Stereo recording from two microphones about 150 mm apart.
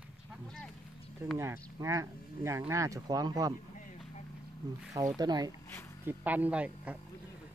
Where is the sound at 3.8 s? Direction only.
60° left (ahead or behind).